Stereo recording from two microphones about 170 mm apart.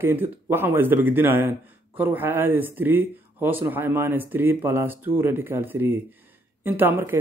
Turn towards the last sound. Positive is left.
turn(degrees=-10)  # may be behind; listen again after turning